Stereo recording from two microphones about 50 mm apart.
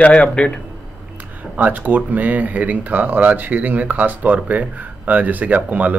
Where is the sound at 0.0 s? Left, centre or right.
Centre.